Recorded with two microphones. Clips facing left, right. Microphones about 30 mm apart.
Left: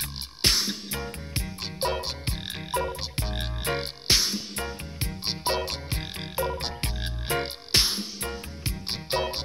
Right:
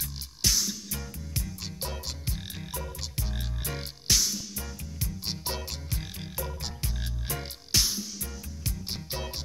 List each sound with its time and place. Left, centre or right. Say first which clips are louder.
0.4 s music: left 3 dB; left